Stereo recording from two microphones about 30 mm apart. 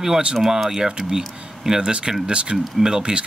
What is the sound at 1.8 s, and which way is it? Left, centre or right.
Speech, right.